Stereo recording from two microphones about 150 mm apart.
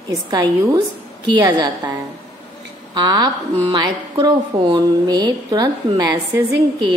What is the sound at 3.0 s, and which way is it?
Speech, 25° right (ahead or behind).